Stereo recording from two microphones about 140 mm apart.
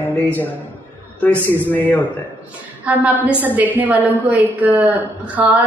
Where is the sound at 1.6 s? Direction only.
10° left (ahead or behind).